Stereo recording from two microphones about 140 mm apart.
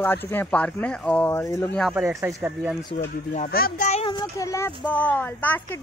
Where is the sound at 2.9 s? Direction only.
65° left (ahead or behind); by 3.9 s 80° left.